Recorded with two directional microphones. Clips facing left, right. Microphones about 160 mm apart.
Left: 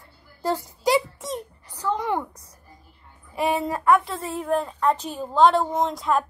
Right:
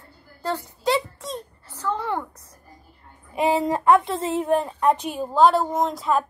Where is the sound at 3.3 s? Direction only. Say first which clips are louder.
Right 3 dB; 20° right (ahead or behind).